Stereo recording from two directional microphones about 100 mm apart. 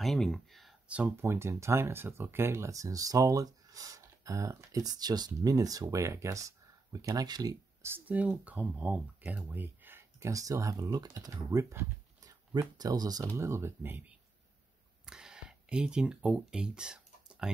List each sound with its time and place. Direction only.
0.0 s speech: 5° left (ahead or behind)
0.8 s speech: 15° right (ahead or behind)
1.1 s speech: 25° right (ahead or behind); by 7.5 s 40° right (ahead or behind)
7.8 s speech: 20° right (ahead or behind)
10.3 s speech: 35° right (ahead or behind)
15.0 s a sound: 5° right (ahead or behind)